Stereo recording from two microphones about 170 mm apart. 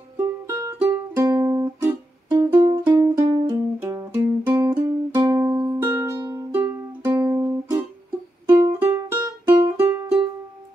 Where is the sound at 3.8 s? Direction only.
15° right (ahead or behind).